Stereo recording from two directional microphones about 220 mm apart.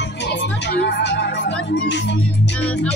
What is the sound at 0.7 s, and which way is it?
Music, 50° left (ahead or behind).